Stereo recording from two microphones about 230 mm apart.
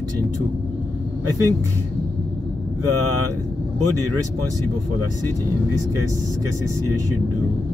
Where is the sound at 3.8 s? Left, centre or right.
Right.